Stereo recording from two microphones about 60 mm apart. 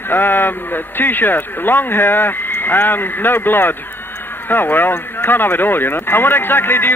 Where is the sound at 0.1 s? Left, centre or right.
Left.